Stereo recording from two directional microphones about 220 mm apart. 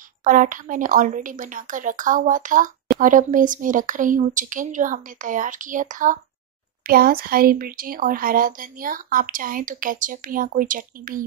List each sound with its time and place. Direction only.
0.2 s speech: 35° right (ahead or behind)